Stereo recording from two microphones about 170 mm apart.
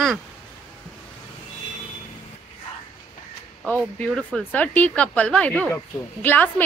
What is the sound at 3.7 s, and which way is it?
A woman's voice, 5° left (ahead or behind).